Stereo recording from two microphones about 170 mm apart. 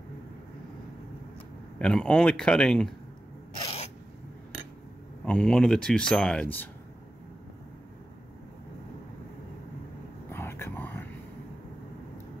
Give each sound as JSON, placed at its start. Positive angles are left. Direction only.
{"t": 1.8, "sound": "speech", "side_deg": 5}
{"t": 3.6, "sound": "a sound", "side_deg": 35}
{"t": 5.2, "sound": "speech", "side_deg": 5}
{"t": 10.3, "sound": "vehicle", "side_deg": 15}